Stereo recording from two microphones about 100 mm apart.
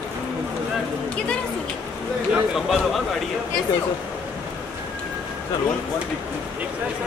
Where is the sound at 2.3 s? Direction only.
Centre (ahead or behind).